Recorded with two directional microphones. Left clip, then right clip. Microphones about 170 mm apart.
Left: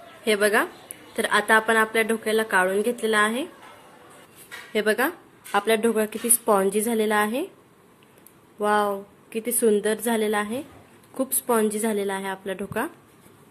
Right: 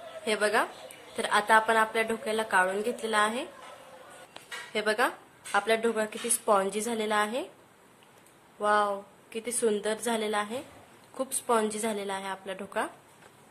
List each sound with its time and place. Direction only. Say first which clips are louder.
0.2 s a woman's voice: left 6 dB; 10° left (ahead or behind)
4.7 s a woman's voice: left 5 dB; 15° left (ahead or behind)
8.5 s a woman's voice: left 4 dB; 15° left (ahead or behind)